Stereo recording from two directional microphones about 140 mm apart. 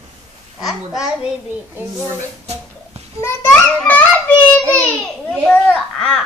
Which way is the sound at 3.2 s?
15° left (ahead or behind).